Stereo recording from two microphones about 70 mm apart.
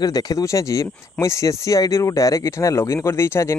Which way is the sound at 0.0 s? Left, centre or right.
Left.